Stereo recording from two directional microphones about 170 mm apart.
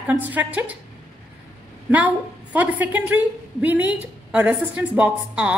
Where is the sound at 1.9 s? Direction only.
10° right (ahead or behind).